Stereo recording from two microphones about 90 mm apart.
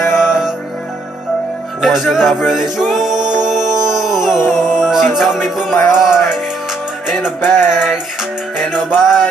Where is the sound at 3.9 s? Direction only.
5° right (ahead or behind).